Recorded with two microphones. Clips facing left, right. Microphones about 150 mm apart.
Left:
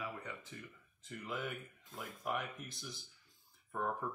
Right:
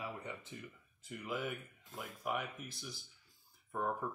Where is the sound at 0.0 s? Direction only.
20° right (ahead or behind).